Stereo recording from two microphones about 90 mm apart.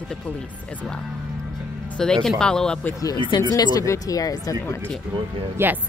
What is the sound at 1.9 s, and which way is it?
Speech, 5° left (ahead or behind).